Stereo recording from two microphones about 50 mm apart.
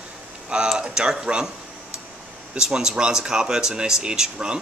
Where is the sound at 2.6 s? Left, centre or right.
Centre.